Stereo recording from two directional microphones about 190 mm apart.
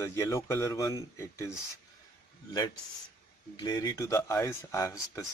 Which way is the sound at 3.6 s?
20° left (ahead or behind).